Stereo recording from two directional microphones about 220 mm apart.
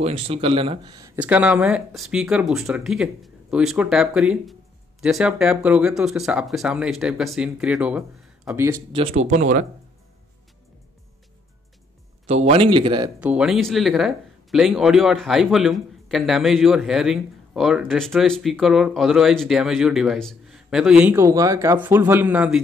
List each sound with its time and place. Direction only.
0.0 s speech: 25° right (ahead or behind)
8.9 s speech: 30° right (ahead or behind)
12.3 s speech: 30° right (ahead or behind)
13.2 s speech: 5° right (ahead or behind)